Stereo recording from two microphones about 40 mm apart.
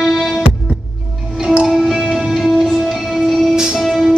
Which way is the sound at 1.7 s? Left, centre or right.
Centre.